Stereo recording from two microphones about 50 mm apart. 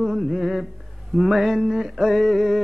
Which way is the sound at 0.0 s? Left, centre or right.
Centre.